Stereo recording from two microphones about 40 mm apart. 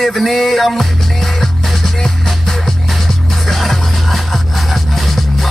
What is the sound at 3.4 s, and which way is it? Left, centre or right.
Music, centre.